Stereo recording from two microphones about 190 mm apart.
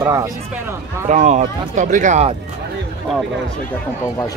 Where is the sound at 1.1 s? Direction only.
40° right (ahead or behind).